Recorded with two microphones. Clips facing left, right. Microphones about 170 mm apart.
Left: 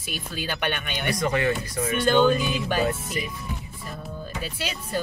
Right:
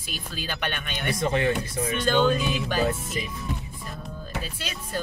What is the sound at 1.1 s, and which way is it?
Speech, 25° right (ahead or behind).